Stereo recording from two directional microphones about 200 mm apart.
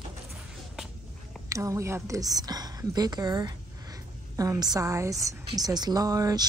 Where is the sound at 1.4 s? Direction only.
15° right (ahead or behind).